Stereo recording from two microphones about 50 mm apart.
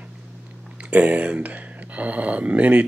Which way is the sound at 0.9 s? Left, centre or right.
Right.